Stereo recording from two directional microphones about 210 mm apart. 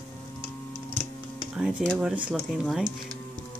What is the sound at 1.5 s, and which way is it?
Speech, centre (ahead or behind).